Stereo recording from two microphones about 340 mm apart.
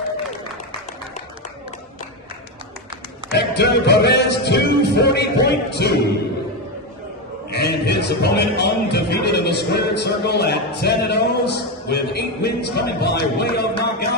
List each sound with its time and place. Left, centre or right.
3.3 s music: left
7.5 s music: left